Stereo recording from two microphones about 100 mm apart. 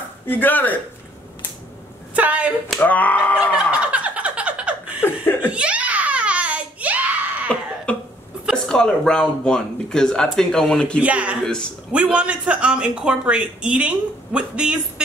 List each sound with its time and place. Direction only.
0.3 s a man's voice: 20° left (ahead or behind)
2.1 s speech: 15° right (ahead or behind)
2.8 s speech: 15° left (ahead or behind)
3.5 s fowl: 10° right (ahead or behind)
5.0 s laughter: 20° left (ahead or behind)
5.5 s a sound: 10° right (ahead or behind)
7.4 s cough: 10° left (ahead or behind)
8.6 s speech: 5° left (ahead or behind)
11.0 s speech: 15° right (ahead or behind)
11.4 s speech: 10° left (ahead or behind)
11.9 s speech: 10° right (ahead or behind)